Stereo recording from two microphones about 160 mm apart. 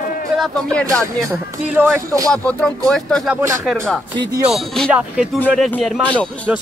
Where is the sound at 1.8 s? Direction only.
15° right (ahead or behind).